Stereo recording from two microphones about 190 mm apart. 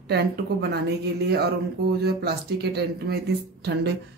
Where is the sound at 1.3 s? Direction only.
60° right (ahead or behind).